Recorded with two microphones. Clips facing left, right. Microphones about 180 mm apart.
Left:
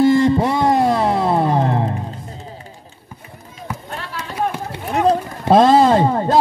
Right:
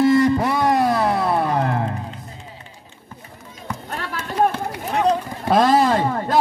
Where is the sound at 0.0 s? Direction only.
25° left (ahead or behind).